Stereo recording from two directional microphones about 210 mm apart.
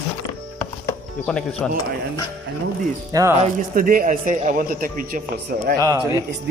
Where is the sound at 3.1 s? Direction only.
15° right (ahead or behind).